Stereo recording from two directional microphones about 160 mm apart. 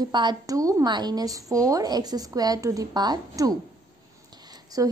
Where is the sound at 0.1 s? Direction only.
30° right (ahead or behind).